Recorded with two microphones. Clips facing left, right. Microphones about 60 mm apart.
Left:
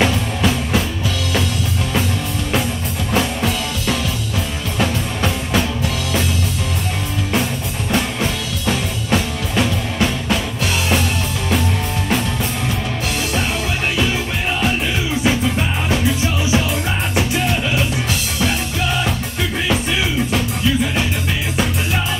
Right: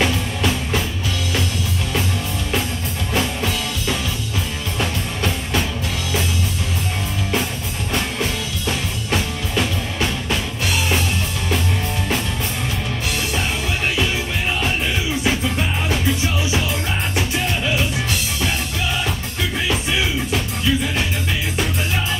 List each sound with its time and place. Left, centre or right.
0.0 s music: centre
3.1 s music: centre
4.7 s music: centre
7.9 s music: centre
15.2 s music: centre
17.1 s music: centre